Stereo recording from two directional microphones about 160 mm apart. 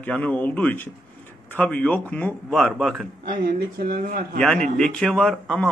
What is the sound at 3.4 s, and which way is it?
Speech, 65° right (ahead or behind).